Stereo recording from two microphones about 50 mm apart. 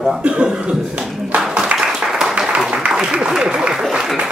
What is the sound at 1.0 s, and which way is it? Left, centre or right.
Music, centre.